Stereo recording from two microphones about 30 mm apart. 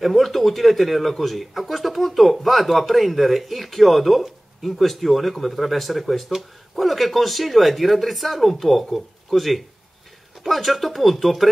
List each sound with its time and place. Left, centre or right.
0.0 s speech: centre